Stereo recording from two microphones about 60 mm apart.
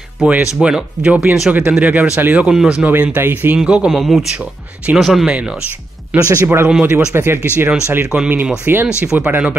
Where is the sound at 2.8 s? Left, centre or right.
Right.